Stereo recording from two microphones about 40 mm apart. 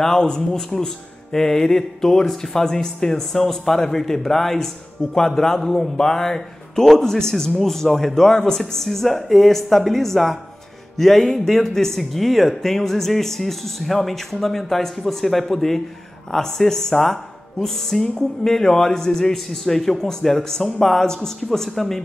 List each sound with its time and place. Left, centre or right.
0.2 s a man's voice: centre
21.5 s speech: centre